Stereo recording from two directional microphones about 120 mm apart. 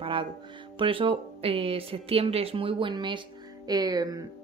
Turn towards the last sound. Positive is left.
turn(degrees=-30)  # may be behind; listen again after turning